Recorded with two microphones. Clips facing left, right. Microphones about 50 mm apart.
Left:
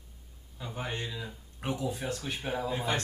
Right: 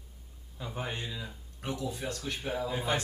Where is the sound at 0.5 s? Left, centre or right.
Centre.